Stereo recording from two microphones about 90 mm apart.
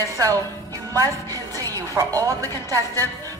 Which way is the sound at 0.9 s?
40° right (ahead or behind).